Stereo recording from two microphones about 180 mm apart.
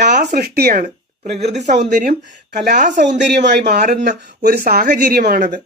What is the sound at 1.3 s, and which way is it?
Speech, 40° right (ahead or behind).